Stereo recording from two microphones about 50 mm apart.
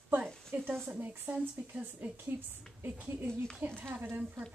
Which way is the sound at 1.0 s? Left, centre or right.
Right.